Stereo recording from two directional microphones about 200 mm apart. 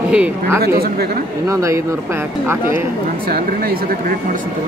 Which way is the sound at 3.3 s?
50° right (ahead or behind).